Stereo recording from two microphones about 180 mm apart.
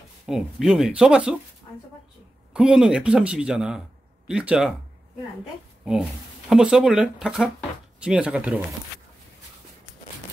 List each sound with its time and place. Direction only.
0.3 s speech: centre (ahead or behind)
2.5 s speech: 5° right (ahead or behind)
6.5 s speech: 5° right (ahead or behind)